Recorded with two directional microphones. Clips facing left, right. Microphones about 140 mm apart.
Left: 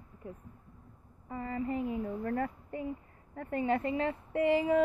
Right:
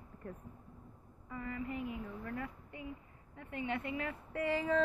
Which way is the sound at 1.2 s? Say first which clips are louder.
Left 6 dB; 35° left (ahead or behind).